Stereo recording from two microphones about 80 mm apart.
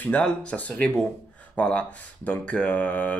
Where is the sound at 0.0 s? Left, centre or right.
Centre.